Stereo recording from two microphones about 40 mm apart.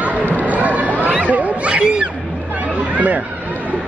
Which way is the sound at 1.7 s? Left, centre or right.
Right.